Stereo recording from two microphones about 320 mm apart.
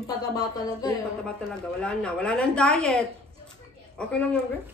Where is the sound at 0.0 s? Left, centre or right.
Centre.